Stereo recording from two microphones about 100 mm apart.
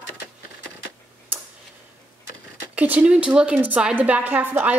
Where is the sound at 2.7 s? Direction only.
15° right (ahead or behind).